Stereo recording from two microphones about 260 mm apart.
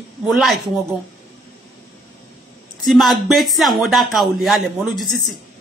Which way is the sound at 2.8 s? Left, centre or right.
Centre.